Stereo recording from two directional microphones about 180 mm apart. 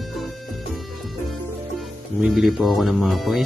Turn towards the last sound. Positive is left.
turn(degrees=0)  # may be behind; listen again after turning